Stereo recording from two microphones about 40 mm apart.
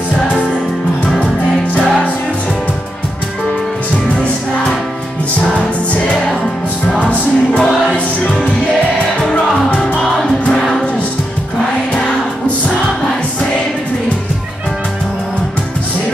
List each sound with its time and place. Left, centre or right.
4.1 s music: left
7.0 s music: left